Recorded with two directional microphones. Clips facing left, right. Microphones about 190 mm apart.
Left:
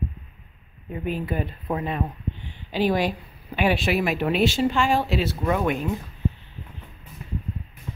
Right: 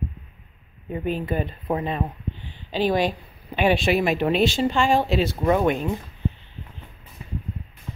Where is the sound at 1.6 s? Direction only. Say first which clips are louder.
Right 2 dB; 20° right (ahead or behind).